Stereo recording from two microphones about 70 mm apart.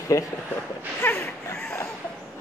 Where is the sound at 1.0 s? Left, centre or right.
Left.